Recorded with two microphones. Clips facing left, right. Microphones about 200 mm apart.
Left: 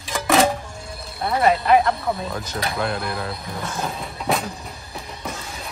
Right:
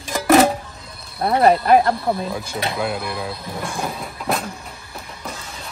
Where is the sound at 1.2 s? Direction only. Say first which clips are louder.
Right 4 dB; 45° right (ahead or behind).